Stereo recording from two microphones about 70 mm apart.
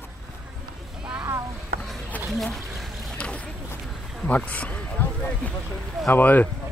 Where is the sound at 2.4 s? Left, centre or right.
Centre.